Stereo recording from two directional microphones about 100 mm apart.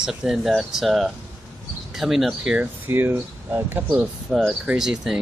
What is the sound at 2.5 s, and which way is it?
Speech, 20° right (ahead or behind).